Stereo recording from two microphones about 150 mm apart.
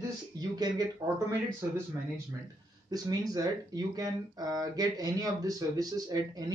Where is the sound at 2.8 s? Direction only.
25° right (ahead or behind).